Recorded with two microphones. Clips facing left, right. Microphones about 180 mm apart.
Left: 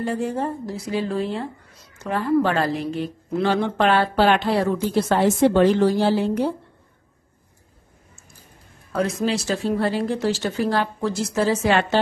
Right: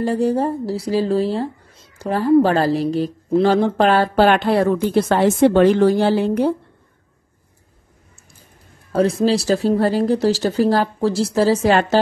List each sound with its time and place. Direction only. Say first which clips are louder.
0.0 s speech: right 6 dB; 35° right (ahead or behind); by 6.5 s 60° right (ahead or behind)
8.9 s speech: right 6 dB; 30° right (ahead or behind)